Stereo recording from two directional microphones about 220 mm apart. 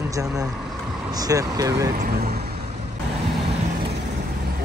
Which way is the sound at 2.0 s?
45° right (ahead or behind).